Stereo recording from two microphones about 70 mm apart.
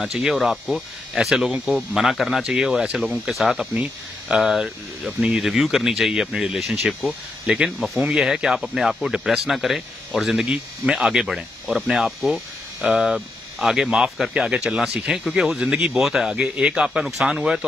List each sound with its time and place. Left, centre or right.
0.0 s speech: centre
3.7 s speech: centre
4.4 s speech: centre